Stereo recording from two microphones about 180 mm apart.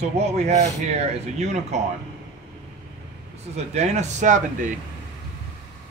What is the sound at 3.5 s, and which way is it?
Speech, 40° right (ahead or behind).